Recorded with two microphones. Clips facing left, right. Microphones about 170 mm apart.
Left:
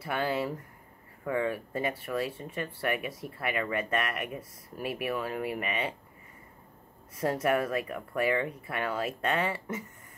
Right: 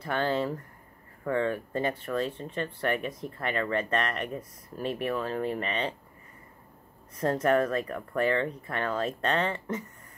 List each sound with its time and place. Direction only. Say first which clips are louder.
0.0 s speech: right 2 dB; 10° left (ahead or behind)
7.2 s speech: right 3 dB; 10° left (ahead or behind)